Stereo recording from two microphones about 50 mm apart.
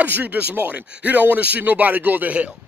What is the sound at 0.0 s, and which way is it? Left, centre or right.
Speech, right.